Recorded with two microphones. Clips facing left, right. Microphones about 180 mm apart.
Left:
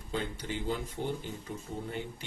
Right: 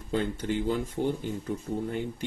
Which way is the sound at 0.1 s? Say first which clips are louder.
Right 7 dB; 50° right (ahead or behind).